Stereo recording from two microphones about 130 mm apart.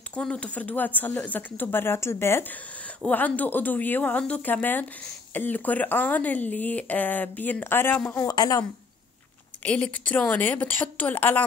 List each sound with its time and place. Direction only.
0.1 s a man's voice: 10° left (ahead or behind); by 8.6 s 25° left (ahead or behind)
9.6 s speech: 10° left (ahead or behind)